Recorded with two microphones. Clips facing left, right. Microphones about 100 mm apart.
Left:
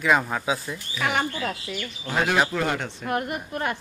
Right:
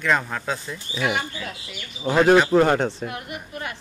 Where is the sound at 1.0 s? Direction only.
50° left (ahead or behind).